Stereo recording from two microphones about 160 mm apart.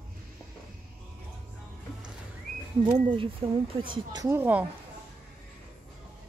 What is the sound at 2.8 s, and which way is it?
Speech, 30° right (ahead or behind).